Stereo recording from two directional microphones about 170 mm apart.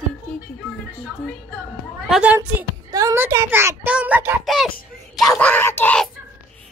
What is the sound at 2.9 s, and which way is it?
A child's voice, 20° right (ahead or behind).